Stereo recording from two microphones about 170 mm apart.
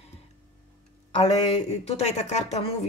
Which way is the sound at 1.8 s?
40° left (ahead or behind).